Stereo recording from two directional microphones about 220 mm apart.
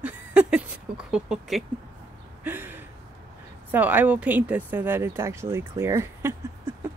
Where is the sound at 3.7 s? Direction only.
10° right (ahead or behind).